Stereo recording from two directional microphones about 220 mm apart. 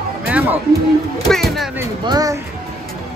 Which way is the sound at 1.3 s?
Centre (ahead or behind).